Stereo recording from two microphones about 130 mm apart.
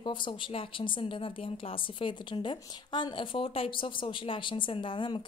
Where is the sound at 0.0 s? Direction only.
40° left (ahead or behind).